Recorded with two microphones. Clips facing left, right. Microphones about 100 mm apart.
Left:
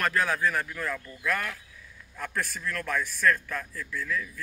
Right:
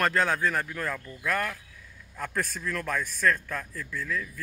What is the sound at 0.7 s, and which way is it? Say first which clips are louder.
Speech: even; 45° right (ahead or behind).